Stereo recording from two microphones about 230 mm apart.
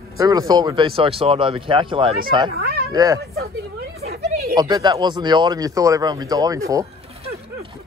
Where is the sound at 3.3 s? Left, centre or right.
Right.